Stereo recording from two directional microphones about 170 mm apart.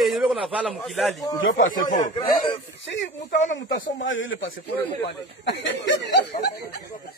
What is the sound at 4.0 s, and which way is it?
Speech, 90° left.